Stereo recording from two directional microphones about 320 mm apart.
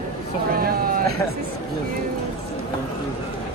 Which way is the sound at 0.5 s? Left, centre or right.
Right.